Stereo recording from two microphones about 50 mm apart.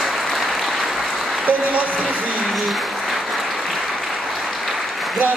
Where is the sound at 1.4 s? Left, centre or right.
Right.